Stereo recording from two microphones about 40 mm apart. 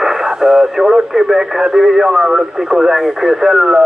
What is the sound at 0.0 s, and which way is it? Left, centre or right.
Speech, centre.